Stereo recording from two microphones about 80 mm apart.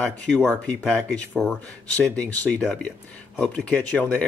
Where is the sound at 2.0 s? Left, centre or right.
Centre.